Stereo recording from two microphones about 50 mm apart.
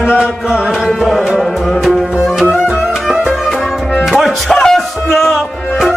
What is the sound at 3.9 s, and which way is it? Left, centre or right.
Music, centre.